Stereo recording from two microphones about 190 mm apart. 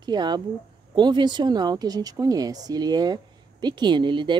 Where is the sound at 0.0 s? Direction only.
20° right (ahead or behind).